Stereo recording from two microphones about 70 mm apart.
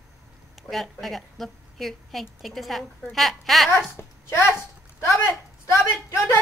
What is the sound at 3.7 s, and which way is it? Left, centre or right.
Speech, left.